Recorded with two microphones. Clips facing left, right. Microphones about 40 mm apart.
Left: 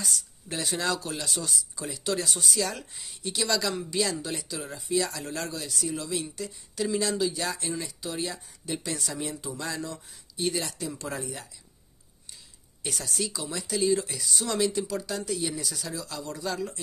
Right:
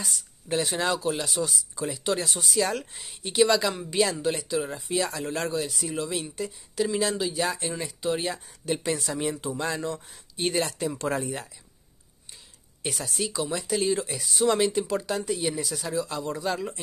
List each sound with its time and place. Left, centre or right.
0.0 s speech: centre
1.3 s speech: centre
1.8 s speech: right
2.9 s speech: right
10.3 s speech: right
12.9 s speech: centre
14.5 s speech: right